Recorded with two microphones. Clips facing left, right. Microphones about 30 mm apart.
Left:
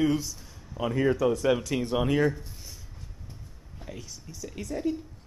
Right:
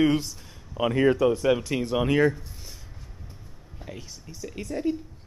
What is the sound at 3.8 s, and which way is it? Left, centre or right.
Speech, centre.